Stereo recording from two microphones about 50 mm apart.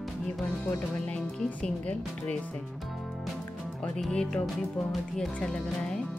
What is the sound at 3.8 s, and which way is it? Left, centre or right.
Speech, centre.